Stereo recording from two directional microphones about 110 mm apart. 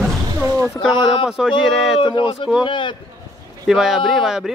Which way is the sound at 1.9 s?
50° left (ahead or behind).